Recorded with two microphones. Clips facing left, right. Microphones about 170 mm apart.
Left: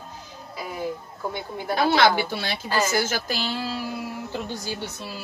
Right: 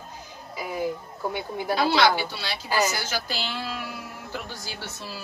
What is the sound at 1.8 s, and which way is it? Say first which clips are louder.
Speech: left 2 dB; 50° left (ahead or behind).